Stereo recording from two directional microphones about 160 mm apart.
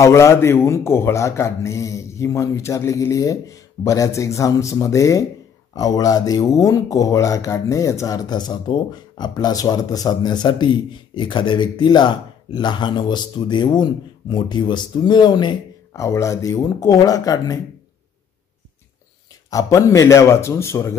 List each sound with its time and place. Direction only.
0.0 s a man's voice: 20° left (ahead or behind)
19.9 s a man's voice: 20° left (ahead or behind)